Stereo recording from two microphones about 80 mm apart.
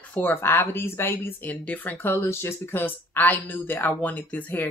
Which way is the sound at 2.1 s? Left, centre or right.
Left.